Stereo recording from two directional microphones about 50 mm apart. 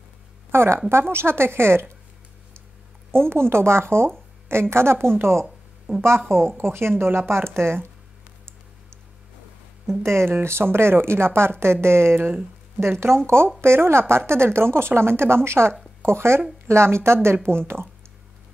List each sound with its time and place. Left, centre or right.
0.5 s speech: right
3.1 s a woman's voice: right
6.0 s a woman's voice: right
10.0 s a woman's voice: right